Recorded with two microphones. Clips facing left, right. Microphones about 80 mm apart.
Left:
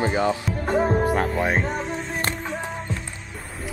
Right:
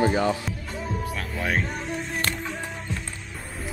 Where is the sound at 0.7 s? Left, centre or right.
Left.